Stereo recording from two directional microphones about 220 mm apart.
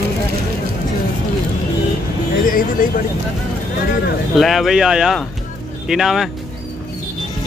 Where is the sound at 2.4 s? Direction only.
40° left (ahead or behind).